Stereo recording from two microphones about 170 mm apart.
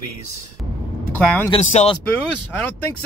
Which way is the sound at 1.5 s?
35° left (ahead or behind).